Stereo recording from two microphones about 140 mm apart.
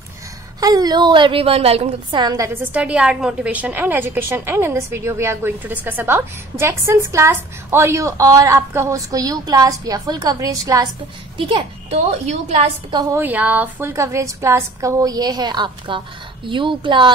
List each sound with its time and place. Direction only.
0.6 s a woman's voice: 25° right (ahead or behind); by 2.1 s 45° right (ahead or behind)
2.1 s a woman's voice: 25° right (ahead or behind)
11.3 s a child's voice: 40° right (ahead or behind)
12.3 s a woman's voice: 55° right (ahead or behind)
13.1 s a woman's voice: 10° right (ahead or behind); by 17.1 s 35° right (ahead or behind)